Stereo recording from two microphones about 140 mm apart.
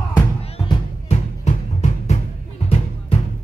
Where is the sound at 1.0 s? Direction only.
55° left (ahead or behind).